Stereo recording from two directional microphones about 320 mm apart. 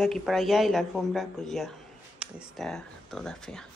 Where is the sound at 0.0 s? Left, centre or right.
Centre.